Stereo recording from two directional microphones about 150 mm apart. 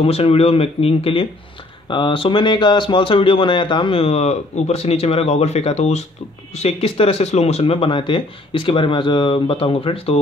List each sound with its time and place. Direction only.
0.0 s a man's voice: 40° left (ahead or behind)